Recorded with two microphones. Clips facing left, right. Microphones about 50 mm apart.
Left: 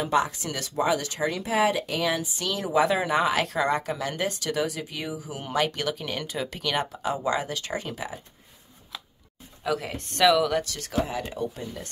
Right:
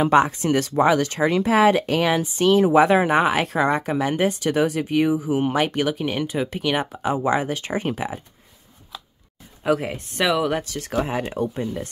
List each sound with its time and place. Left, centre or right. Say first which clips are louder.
0.0 s a woman's voice: right 7 dB; right
9.6 s speech: right 7 dB; right